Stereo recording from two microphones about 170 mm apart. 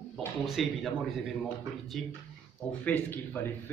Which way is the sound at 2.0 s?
Centre (ahead or behind).